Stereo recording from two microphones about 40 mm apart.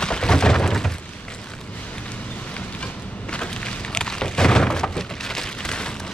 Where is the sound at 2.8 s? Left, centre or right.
Left.